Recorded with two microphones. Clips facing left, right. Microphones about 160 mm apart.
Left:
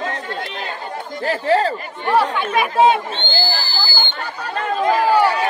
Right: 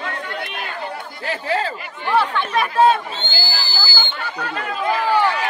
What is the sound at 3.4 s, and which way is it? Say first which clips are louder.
Chatter: left 4 dB; 50° left (ahead or behind).